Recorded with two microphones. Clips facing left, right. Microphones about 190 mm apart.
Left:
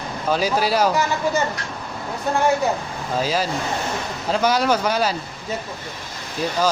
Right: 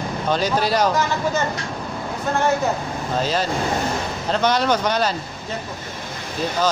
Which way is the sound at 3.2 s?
5° left (ahead or behind).